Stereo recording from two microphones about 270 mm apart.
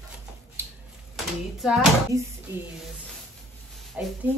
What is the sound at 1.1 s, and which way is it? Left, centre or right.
Speech, centre.